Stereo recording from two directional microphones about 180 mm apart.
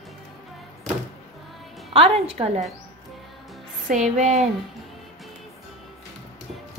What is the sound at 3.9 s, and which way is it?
Music, 45° right (ahead or behind).